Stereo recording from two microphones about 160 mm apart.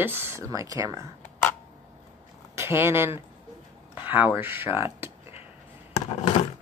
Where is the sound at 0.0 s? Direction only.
15° right (ahead or behind).